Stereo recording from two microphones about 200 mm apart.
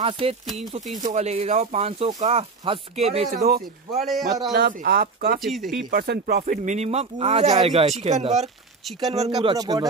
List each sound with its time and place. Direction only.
0.0 s speech: 30° right (ahead or behind)
3.3 s speech: 50° right (ahead or behind)
3.9 s speech: centre (ahead or behind)
4.6 s speech: 50° right (ahead or behind)
5.4 s speech: centre (ahead or behind)
5.9 s speech: 50° right (ahead or behind); by 8.5 s 35° right (ahead or behind)
9.4 s speech: 20° right (ahead or behind)